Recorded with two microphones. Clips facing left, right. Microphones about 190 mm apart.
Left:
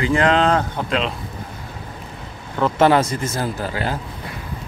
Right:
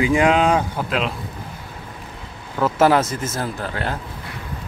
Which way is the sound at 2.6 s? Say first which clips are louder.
Left 1 dB; 5° right (ahead or behind).